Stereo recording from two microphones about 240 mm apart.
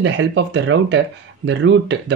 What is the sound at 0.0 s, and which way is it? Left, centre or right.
Speech, right.